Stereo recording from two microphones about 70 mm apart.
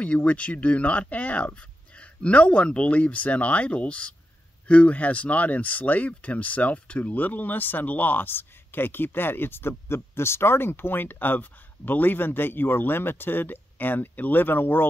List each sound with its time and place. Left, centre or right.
0.0 s speech: centre